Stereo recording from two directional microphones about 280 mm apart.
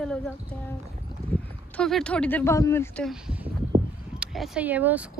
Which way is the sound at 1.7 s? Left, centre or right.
Centre.